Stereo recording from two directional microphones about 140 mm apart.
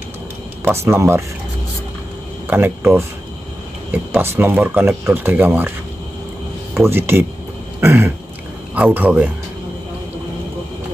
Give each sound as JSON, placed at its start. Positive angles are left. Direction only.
{"t": 0.7, "sound": "speech", "side_deg": -20}
{"t": 2.4, "sound": "speech", "side_deg": -15}
{"t": 6.7, "sound": "speech", "side_deg": -15}